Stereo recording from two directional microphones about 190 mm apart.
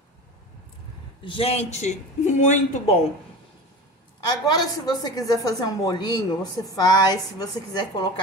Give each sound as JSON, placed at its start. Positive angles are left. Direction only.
{"t": 1.2, "sound": "speech", "side_deg": 30}
{"t": 4.3, "sound": "a woman's voice", "side_deg": 20}